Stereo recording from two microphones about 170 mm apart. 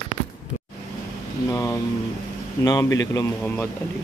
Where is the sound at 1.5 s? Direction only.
15° left (ahead or behind).